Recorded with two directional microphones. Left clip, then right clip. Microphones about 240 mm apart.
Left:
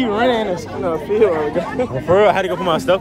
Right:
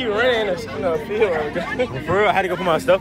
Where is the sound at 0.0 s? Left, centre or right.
Left.